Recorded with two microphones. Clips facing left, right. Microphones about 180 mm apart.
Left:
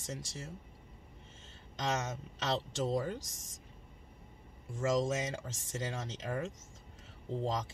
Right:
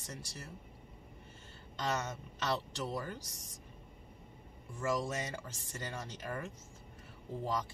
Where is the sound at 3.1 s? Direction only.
85° left.